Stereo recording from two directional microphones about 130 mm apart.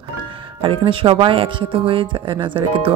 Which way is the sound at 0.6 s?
40° right (ahead or behind).